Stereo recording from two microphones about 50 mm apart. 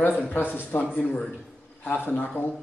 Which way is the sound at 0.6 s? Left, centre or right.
Left.